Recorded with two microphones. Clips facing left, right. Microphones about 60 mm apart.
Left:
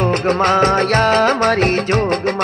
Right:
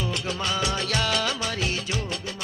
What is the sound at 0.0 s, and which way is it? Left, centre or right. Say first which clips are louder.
Music: left 14 dB; left.